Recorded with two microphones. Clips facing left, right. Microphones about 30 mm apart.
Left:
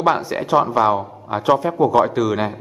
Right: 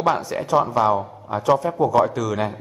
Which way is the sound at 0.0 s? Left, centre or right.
Left.